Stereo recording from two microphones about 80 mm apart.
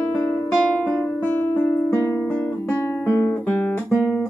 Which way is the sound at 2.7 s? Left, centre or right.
Left.